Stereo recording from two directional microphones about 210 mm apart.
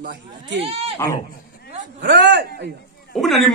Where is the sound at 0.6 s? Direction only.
30° right (ahead or behind).